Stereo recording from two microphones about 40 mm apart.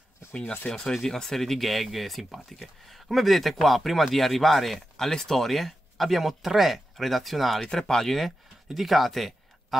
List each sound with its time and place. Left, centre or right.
0.3 s speech: left
0.7 s speech: centre
7.7 s speech: centre
8.6 s speech: centre